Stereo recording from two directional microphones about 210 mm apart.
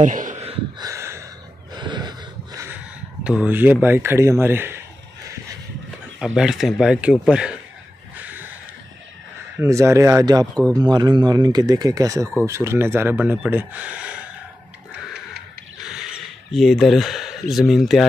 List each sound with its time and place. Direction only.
0.0 s gasp: 40° right (ahead or behind)
0.8 s a sound: 15° right (ahead or behind)
1.7 s snort: 20° right (ahead or behind)
3.3 s speech: 5° right (ahead or behind)
6.1 s speech: 5° right (ahead or behind)
8.2 s a sound: 5° right (ahead or behind)
9.6 s speech: 15° right (ahead or behind)
15.8 s speech: 5° right (ahead or behind)